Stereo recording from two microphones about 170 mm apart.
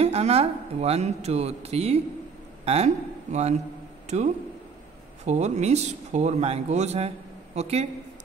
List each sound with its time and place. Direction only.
0.0 s speech: 40° right (ahead or behind)